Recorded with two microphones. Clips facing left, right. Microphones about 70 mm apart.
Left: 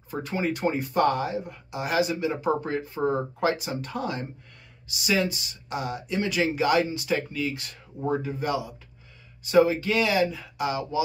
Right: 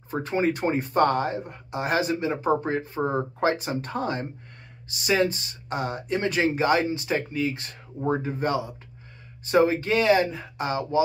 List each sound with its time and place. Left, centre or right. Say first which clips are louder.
0.1 s speech: right 4 dB; right